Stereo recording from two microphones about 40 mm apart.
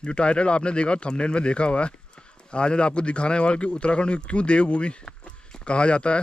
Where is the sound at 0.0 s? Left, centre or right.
Left.